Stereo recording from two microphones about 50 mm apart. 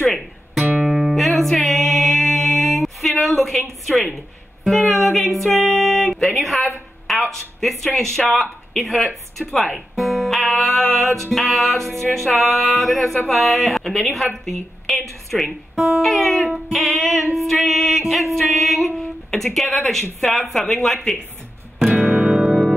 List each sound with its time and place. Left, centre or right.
0.8 s music: centre
4.6 s music: centre
6.2 s a woman's voice: centre
9.8 s music: centre
11.3 s a woman's voice: centre
16.5 s music: centre
18.9 s speech: centre
22.2 s music: centre